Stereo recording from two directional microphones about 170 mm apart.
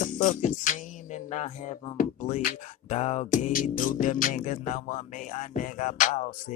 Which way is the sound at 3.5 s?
55° left (ahead or behind).